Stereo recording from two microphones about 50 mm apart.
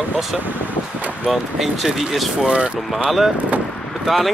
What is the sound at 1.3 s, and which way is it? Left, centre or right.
Speech, centre.